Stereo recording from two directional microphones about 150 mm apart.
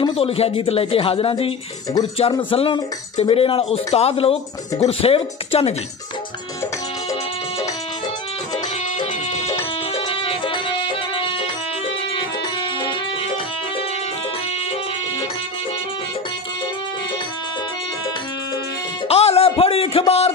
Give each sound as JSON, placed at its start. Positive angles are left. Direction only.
{"t": 0.0, "sound": "speech", "side_deg": 40}
{"t": 2.5, "sound": "speech", "side_deg": 40}
{"t": 9.3, "sound": "music", "side_deg": 45}
{"t": 19.0, "sound": "a sound", "side_deg": 45}